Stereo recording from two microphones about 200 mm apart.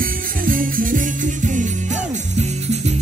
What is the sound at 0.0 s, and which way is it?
Music, 45° right (ahead or behind).